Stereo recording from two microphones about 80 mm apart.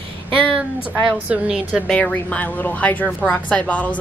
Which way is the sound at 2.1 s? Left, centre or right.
Left.